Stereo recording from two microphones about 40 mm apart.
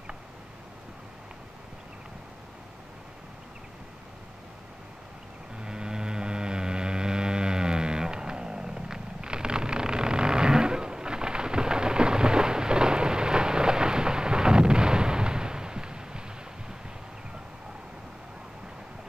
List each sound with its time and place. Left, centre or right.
5.6 s vehicle: centre